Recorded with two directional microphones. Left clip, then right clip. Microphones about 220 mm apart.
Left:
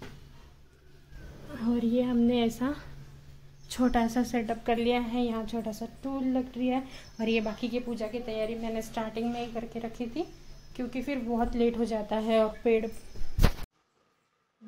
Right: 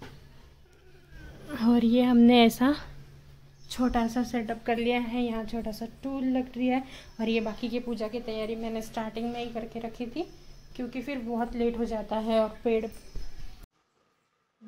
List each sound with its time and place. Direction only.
1.5 s a sound: 30° right (ahead or behind)
2.6 s a woman's voice: 15° right (ahead or behind)
3.6 s a woman's voice: centre (ahead or behind)